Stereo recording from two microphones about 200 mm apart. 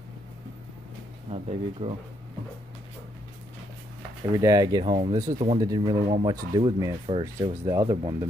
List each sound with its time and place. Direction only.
1.3 s speech: 30° right (ahead or behind)
4.4 s speech: 20° right (ahead or behind)